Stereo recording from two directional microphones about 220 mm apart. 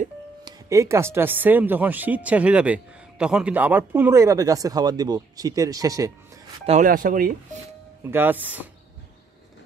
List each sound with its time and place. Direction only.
0.5 s speech: 15° right (ahead or behind)
6.6 s speech: 35° right (ahead or behind)
8.0 s speech: 10° right (ahead or behind)